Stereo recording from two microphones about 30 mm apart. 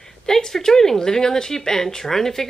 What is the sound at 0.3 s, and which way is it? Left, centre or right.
Speech, centre.